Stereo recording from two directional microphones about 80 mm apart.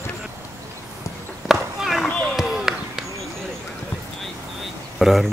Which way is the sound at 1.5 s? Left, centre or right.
Centre.